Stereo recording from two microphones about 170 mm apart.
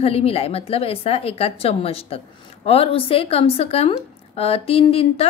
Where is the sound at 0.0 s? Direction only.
35° left (ahead or behind).